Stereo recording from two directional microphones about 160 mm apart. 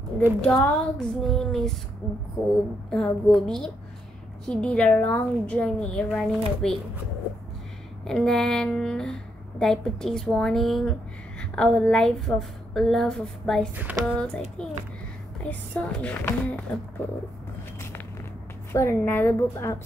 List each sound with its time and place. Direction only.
0.4 s a woman's voice: 5° left (ahead or behind)
8.0 s a woman's voice: 5° left (ahead or behind)
15.4 s a woman's voice: 10° left (ahead or behind)
18.7 s a woman's voice: 15° left (ahead or behind)